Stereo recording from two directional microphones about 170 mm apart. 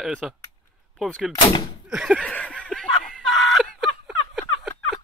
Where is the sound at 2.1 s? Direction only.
5° left (ahead or behind).